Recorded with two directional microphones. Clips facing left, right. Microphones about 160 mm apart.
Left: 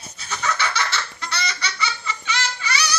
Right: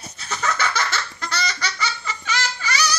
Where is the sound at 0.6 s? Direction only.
45° right (ahead or behind).